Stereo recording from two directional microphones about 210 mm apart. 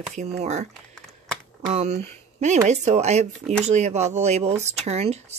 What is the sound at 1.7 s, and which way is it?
Speech, 30° right (ahead or behind).